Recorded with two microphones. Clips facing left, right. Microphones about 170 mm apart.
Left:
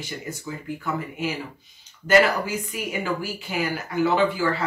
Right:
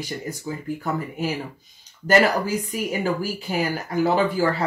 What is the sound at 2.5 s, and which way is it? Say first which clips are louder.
Speech: right 4 dB; 40° right (ahead or behind).